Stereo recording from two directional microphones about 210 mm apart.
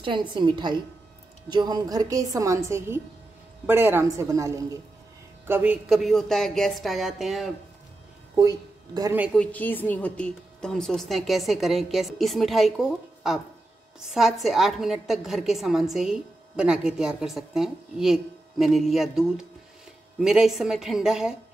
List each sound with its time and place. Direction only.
0.0 s a woman's voice: 20° right (ahead or behind); by 7.5 s centre (ahead or behind)
8.4 s speech: 15° right (ahead or behind)
9.3 s a woman's voice: 5° left (ahead or behind)
14.0 s a woman's voice: centre (ahead or behind)